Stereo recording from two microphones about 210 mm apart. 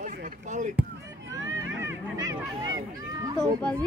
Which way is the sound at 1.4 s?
15° right (ahead or behind).